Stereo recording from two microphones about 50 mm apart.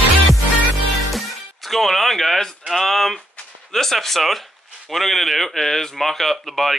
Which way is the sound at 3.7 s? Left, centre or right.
Centre.